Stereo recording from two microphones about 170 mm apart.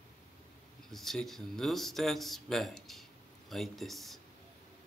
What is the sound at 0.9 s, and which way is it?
Speech, centre (ahead or behind).